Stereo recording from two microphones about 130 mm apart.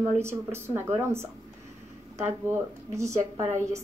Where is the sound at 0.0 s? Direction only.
20° right (ahead or behind).